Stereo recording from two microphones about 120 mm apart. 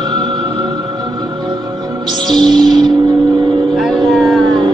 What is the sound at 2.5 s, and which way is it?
Music, 40° right (ahead or behind).